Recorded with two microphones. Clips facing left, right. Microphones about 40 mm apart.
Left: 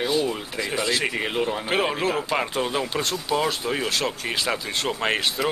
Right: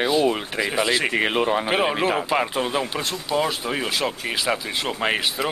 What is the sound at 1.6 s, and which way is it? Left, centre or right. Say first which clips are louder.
Speech: right 2 dB; centre.